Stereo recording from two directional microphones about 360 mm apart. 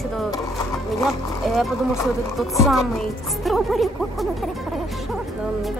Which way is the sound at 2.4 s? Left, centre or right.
Centre.